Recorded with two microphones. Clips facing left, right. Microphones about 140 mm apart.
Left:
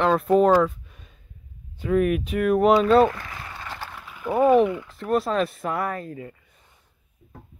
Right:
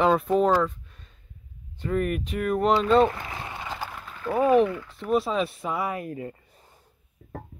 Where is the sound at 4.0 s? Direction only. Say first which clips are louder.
Left 1 dB; 5° left (ahead or behind).